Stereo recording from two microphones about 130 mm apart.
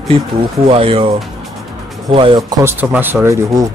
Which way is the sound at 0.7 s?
45° right (ahead or behind).